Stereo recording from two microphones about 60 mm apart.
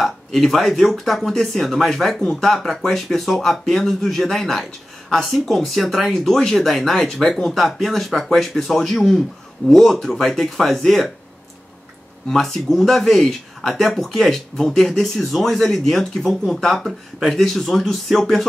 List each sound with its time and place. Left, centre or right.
0.0 s speech: centre
12.3 s speech: centre